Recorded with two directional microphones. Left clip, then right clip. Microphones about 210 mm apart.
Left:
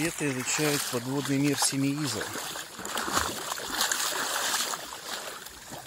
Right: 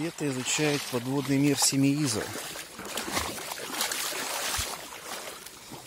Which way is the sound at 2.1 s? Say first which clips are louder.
Even; 5° right (ahead or behind).